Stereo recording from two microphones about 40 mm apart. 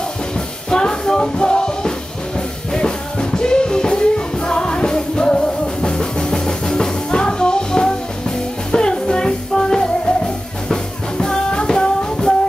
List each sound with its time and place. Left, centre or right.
0.7 s music: centre